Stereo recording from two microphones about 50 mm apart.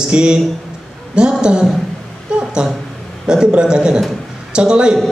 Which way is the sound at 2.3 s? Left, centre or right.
Centre.